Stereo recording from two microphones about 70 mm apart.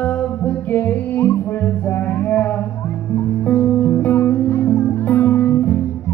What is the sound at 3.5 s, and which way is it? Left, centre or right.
Music, left.